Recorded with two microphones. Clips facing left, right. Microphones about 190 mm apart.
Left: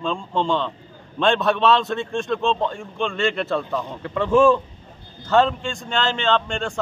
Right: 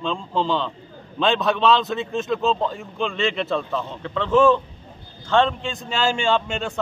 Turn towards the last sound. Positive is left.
turn(degrees=-5)  # may be behind; listen again after turning